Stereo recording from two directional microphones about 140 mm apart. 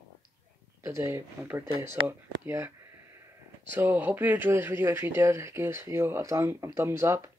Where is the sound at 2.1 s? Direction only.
15° right (ahead or behind).